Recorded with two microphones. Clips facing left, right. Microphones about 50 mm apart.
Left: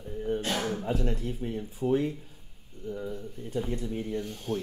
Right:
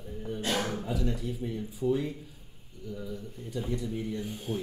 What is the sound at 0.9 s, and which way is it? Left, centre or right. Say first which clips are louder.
Speech: left 2 dB; left.